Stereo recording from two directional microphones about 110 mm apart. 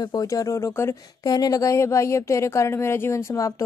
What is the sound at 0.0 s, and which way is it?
Speech, 35° left (ahead or behind).